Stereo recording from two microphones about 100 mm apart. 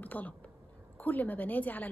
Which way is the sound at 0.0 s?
15° left (ahead or behind).